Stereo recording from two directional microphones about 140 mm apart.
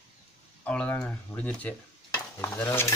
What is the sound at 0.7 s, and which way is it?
Cutlery, 10° left (ahead or behind).